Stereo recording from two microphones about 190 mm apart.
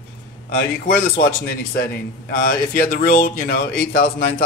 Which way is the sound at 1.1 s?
50° left (ahead or behind).